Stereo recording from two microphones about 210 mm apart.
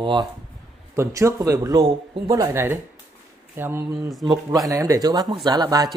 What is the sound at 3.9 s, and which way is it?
Speech, centre (ahead or behind).